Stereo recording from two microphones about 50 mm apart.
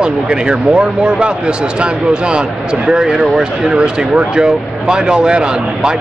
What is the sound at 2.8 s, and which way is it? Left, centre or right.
Speech, centre.